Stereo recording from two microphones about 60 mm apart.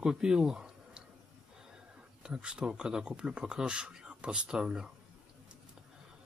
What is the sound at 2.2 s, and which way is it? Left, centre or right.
Speech, centre.